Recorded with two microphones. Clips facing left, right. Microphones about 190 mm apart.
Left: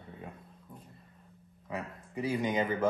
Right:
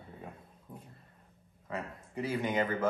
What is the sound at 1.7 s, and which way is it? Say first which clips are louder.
Speech: left 1 dB; 15° left (ahead or behind).